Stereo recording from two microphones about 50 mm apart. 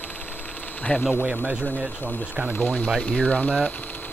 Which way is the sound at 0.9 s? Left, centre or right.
Left.